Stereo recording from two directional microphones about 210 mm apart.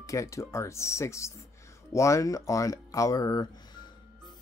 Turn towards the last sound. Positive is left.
turn(degrees=20)  # may be behind; listen again after turning